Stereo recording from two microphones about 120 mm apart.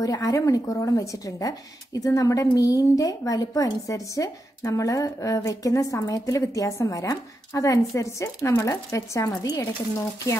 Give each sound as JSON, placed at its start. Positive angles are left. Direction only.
{"t": 0.0, "sound": "a woman's voice", "side_deg": 30}